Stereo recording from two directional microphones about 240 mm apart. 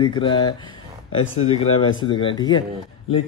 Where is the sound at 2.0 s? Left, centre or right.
Left.